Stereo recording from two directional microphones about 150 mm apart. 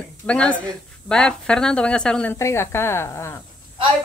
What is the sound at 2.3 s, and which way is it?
A man's voice, 20° left (ahead or behind).